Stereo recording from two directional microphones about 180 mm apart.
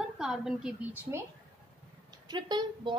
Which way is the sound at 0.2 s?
5° right (ahead or behind).